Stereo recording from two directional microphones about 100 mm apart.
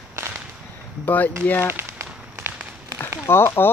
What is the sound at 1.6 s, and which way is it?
Firecracker, 25° right (ahead or behind).